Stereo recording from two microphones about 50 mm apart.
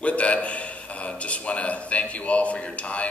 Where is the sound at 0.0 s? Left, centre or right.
Left.